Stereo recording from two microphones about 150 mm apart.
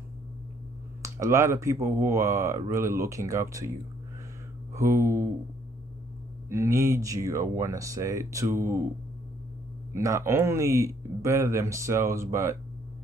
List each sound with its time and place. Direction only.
1.0 s speech: 20° right (ahead or behind)
4.7 s speech: 20° right (ahead or behind)
6.5 s speech: 20° right (ahead or behind)
9.9 s speech: 20° right (ahead or behind)